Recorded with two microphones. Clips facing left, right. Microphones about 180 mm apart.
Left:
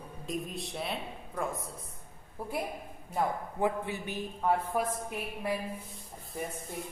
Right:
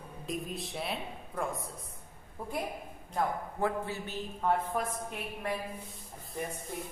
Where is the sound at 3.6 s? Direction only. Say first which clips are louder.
Left 2 dB; 15° left (ahead or behind).